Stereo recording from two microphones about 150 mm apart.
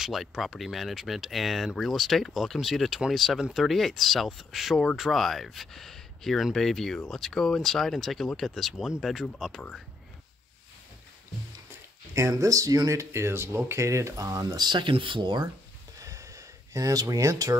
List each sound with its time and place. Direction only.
0.0 s speech: centre (ahead or behind)
12.1 s speech: 20° right (ahead or behind)
16.0 s a sound: 20° right (ahead or behind)